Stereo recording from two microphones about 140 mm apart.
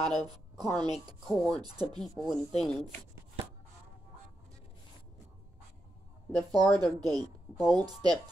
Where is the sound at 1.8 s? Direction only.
Centre (ahead or behind).